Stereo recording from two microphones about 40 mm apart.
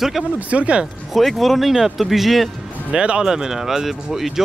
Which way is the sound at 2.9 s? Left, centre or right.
Right.